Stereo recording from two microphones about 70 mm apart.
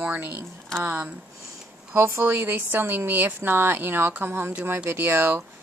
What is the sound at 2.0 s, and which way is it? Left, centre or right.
A woman's voice, right.